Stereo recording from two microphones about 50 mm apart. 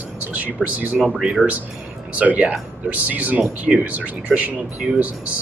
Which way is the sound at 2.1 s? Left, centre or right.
Right.